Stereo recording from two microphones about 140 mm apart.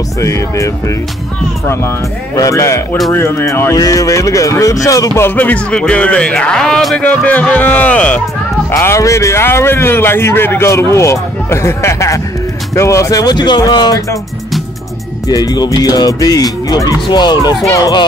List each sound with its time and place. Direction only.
0.2 s a man's voice: 20° left (ahead or behind)
2.3 s a man's voice: 25° left (ahead or behind); by 8.2 s 10° left (ahead or behind)
8.7 s a man's voice: 20° left (ahead or behind)
15.2 s a man's voice: 25° left (ahead or behind)